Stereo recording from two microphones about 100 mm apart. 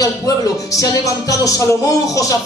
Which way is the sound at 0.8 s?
35° left (ahead or behind).